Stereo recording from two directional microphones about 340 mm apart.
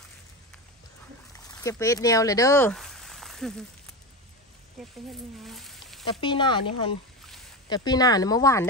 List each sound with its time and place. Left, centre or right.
1.6 s speech: centre
5.4 s a sound: centre
6.0 s speech: centre